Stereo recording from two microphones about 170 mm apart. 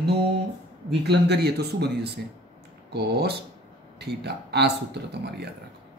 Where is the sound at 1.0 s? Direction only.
75° right (ahead or behind).